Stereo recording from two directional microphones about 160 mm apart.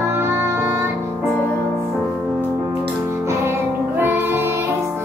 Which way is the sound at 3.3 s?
15° right (ahead or behind).